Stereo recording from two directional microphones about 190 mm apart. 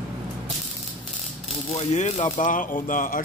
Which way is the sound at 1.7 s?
35° left (ahead or behind).